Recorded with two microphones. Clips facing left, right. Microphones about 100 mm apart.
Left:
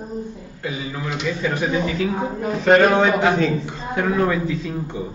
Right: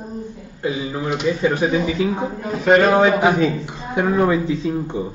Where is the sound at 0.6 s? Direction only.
25° right (ahead or behind).